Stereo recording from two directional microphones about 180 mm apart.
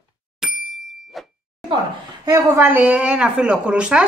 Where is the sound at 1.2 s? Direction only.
Centre (ahead or behind).